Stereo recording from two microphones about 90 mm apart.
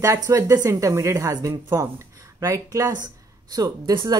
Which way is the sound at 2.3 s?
35° right (ahead or behind).